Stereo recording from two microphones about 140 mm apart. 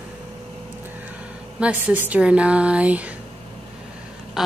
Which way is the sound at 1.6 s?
10° right (ahead or behind).